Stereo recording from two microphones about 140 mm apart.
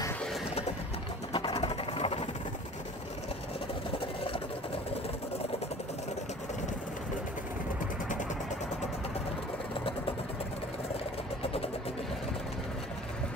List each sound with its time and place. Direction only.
1.3 s vehicle: 40° left (ahead or behind)
11.4 s vehicle: 45° left (ahead or behind)